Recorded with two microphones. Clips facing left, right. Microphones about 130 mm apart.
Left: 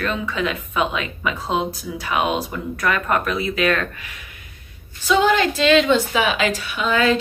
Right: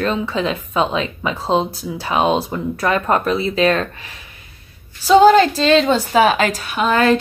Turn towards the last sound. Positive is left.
turn(degrees=-45)  # may be behind; listen again after turning